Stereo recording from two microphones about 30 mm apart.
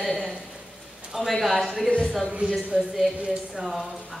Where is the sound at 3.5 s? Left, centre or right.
Centre.